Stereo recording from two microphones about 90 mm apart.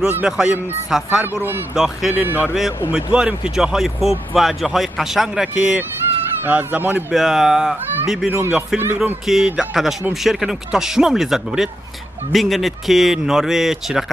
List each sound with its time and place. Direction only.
0.2 s speech: 10° right (ahead or behind)
2.1 s speech: 20° right (ahead or behind)
6.4 s speech: 20° right (ahead or behind)
7.1 s speech: 5° right (ahead or behind)
8.3 s speech: 20° right (ahead or behind)
9.3 s speech: 5° right (ahead or behind)